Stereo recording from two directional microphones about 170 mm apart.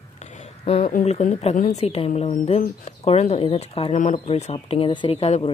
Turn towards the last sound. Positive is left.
turn(degrees=35)  # may be behind; listen again after turning